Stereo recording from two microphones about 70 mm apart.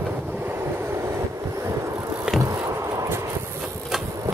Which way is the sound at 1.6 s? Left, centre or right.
Right.